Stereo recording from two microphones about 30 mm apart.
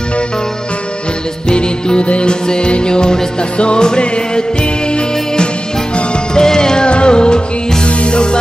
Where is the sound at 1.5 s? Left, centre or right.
Left.